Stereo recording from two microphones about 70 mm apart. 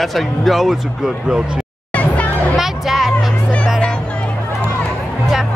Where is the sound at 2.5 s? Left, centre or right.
Centre.